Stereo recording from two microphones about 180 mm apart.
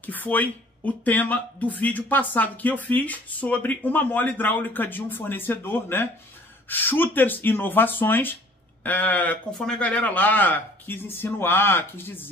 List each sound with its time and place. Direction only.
0.0 s speech: 10° left (ahead or behind)